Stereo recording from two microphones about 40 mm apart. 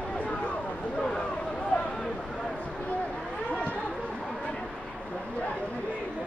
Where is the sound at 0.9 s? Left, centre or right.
Centre.